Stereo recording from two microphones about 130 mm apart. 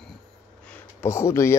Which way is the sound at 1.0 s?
20° left (ahead or behind).